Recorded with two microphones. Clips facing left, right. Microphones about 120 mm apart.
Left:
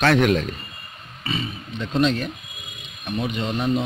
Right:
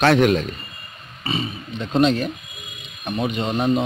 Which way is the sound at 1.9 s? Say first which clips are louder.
Right 3 dB; 40° right (ahead or behind).